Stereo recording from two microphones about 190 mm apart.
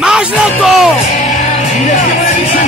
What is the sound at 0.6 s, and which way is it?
Music, centre (ahead or behind).